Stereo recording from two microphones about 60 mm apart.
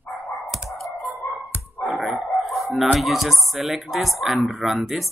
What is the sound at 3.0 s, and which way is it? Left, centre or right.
Speech, centre.